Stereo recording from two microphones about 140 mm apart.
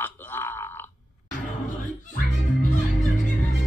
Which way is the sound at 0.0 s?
15° left (ahead or behind).